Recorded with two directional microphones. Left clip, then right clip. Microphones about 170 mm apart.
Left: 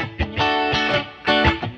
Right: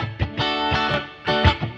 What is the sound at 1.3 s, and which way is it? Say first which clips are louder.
Music: left 4 dB; 55° right (ahead or behind).